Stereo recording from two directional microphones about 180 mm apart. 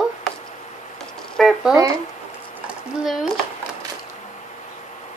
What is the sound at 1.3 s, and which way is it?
Speech, centre (ahead or behind).